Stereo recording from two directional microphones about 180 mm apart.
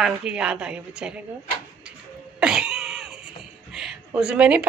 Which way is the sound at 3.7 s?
5° right (ahead or behind).